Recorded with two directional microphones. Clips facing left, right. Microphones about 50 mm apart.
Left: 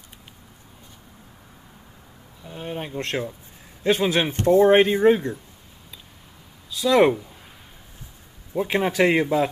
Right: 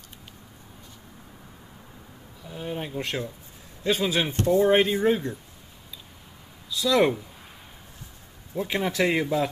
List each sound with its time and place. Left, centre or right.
2.4 s a sound: centre
2.9 s speech: centre
3.8 s a man's voice: left
6.8 s a man's voice: left
8.5 s a man's voice: left